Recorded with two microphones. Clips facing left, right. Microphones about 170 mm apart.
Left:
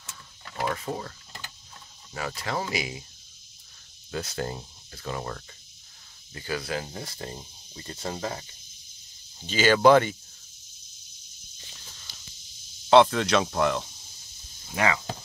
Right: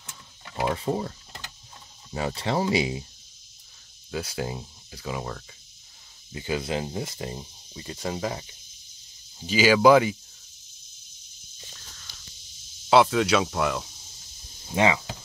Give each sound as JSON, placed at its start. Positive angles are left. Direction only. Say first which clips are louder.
{"t": 0.1, "sound": "a sound", "louder": "right 2 dB", "side_deg": -15}
{"t": 0.7, "sound": "speech", "louder": "right 6 dB", "side_deg": -20}
{"t": 2.1, "sound": "speech", "louder": "right 5 dB", "side_deg": -25}
{"t": 4.1, "sound": "speech", "louder": "right 1 dB", "side_deg": -10}
{"t": 6.3, "sound": "speech", "louder": "right 3 dB", "side_deg": -15}
{"t": 12.9, "sound": "speech", "louder": "left 1 dB", "side_deg": -5}
{"t": 14.7, "sound": "speech", "louder": "right 4 dB", "side_deg": -20}